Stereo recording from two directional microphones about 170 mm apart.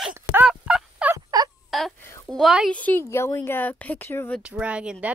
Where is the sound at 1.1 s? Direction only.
20° right (ahead or behind).